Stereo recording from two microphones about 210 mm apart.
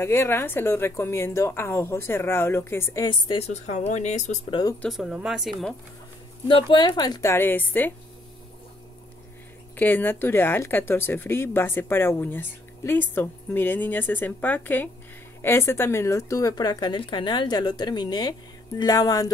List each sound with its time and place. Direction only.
0.0 s speech: 10° left (ahead or behind); by 4.6 s 35° left (ahead or behind)
4.8 s speech: centre (ahead or behind)
6.4 s speech: 25° left (ahead or behind)
9.8 s speech: 10° left (ahead or behind)